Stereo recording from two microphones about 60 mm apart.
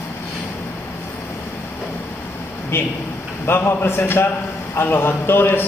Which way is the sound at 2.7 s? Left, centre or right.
Left.